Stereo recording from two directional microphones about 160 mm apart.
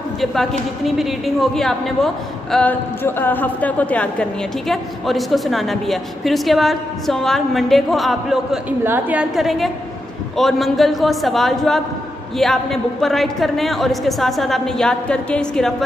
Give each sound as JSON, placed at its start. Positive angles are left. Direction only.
{"t": 0.2, "sound": "a woman's voice", "side_deg": 0}